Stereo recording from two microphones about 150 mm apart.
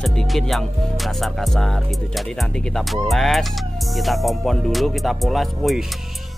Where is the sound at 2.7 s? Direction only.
Centre (ahead or behind).